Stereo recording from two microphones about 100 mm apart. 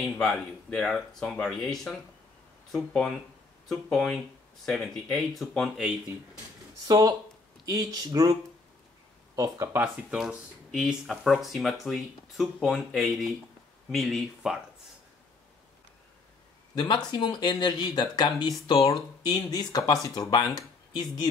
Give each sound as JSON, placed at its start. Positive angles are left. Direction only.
{"t": 0.2, "sound": "speech", "side_deg": 10}
{"t": 6.9, "sound": "speech", "side_deg": -40}
{"t": 10.1, "sound": "speech", "side_deg": -5}
{"t": 16.7, "sound": "speech", "side_deg": 50}